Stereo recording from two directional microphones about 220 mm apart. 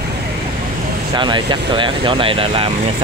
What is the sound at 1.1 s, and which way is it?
Speech, 20° right (ahead or behind).